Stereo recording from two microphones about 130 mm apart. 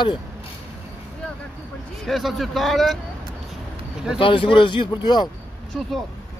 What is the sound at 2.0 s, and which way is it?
Speech, centre (ahead or behind).